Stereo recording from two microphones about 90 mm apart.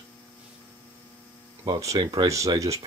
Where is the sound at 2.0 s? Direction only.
45° right (ahead or behind).